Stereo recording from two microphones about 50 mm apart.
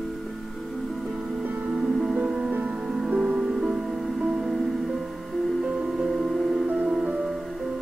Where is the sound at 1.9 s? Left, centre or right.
Centre.